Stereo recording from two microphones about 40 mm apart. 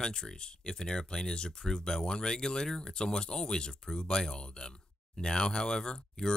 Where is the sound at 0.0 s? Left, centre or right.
Centre.